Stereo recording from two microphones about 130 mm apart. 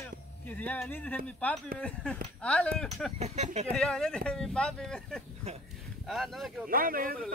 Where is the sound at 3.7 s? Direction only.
5° left (ahead or behind).